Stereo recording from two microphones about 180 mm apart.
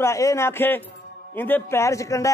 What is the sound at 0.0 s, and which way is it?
A man's voice, 15° left (ahead or behind).